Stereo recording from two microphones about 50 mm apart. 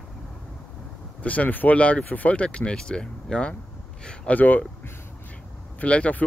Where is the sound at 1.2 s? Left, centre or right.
Left.